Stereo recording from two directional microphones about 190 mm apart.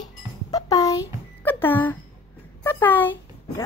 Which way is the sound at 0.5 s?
20° left (ahead or behind).